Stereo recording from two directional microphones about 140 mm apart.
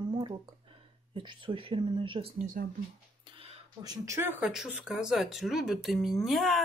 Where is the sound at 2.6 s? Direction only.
90° right.